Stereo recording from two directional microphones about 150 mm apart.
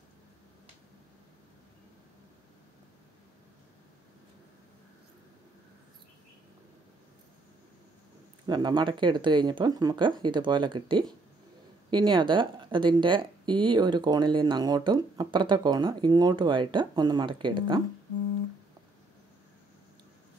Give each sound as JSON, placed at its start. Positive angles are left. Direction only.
{"t": 8.5, "sound": "speech", "side_deg": -30}